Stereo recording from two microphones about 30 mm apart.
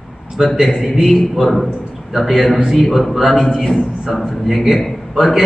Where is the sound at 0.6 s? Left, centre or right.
Centre.